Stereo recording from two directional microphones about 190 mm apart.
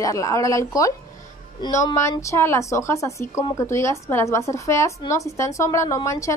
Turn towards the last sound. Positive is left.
turn(degrees=15)  # may be behind; listen again after turning